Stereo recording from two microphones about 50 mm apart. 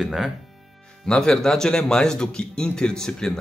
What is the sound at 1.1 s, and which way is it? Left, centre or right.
Speech, centre.